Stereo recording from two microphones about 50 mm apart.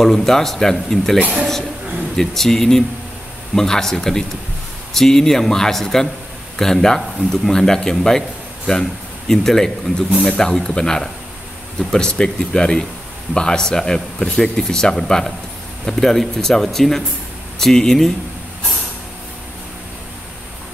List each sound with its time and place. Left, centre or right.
0.0 s speech: centre
9.3 s speech: centre